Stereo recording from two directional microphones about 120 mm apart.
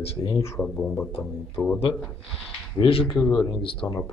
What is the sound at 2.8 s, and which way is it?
Speech, 45° left (ahead or behind).